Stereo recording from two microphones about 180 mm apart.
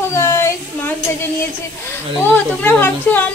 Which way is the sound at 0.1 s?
15° left (ahead or behind).